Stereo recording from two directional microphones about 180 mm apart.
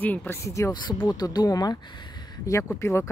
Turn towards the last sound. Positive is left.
turn(degrees=15)  # may be behind; listen again after turning